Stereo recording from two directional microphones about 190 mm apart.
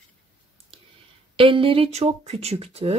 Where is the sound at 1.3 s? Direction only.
30° right (ahead or behind).